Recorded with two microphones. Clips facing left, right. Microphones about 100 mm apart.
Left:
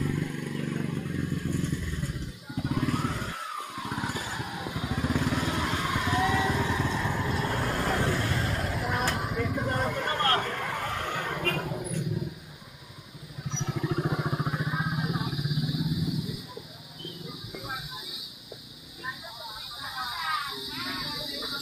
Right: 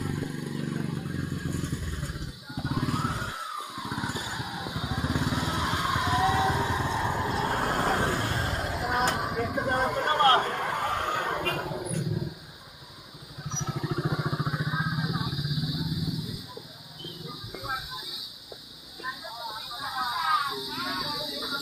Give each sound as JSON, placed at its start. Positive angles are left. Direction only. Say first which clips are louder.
{"t": 0.0, "sound": "vehicle", "louder": "left 2 dB", "side_deg": -25}
{"t": 2.5, "sound": "vehicle", "louder": "left 1 dB", "side_deg": -20}
{"t": 3.5, "sound": "vehicle", "louder": "left 1 dB", "side_deg": -10}
{"t": 11.4, "sound": "a sound", "louder": "even", "side_deg": -20}
{"t": 13.5, "sound": "vehicle", "louder": "left 1 dB", "side_deg": -30}
{"t": 14.0, "sound": "vehicle", "louder": "even", "side_deg": -15}
{"t": 19.8, "sound": "a sound", "louder": "right 5 dB", "side_deg": -30}